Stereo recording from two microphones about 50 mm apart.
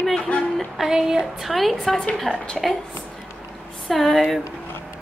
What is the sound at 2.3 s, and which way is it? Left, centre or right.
Speech, centre.